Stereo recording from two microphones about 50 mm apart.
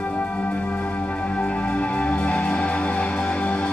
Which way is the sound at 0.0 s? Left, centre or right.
Left.